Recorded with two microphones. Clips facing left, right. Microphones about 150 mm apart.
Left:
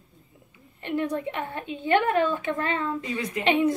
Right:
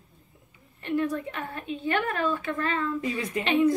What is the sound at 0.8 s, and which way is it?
A woman's voice, 20° left (ahead or behind).